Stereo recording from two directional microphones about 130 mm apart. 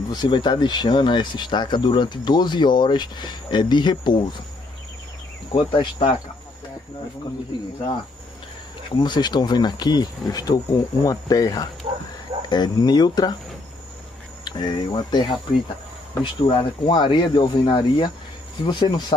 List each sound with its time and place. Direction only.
0.1 s speech: 35° left (ahead or behind)
5.5 s speech: 40° left (ahead or behind)
8.9 s speech: 35° left (ahead or behind)
14.4 s speech: 35° left (ahead or behind)